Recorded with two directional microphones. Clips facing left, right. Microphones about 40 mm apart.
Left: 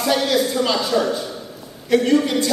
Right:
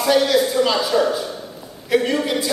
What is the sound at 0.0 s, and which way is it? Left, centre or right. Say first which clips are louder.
A man's voice: right 2 dB; centre.